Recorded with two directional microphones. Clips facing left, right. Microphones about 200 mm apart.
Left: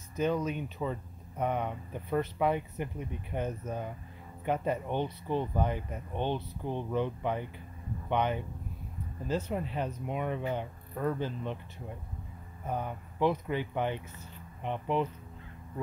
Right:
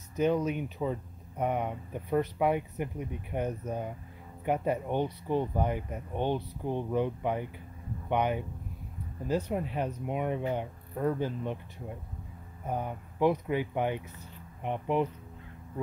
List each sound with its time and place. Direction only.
0.2 s speech: 15° right (ahead or behind)
12.6 s speech: 15° right (ahead or behind)